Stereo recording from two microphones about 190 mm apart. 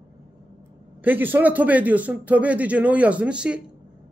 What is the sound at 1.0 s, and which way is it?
Speech, 10° right (ahead or behind).